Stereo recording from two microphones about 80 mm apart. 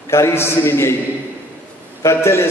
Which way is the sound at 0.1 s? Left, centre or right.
Left.